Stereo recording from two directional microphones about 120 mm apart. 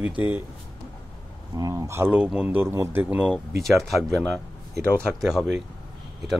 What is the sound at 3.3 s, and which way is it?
Speech, centre (ahead or behind).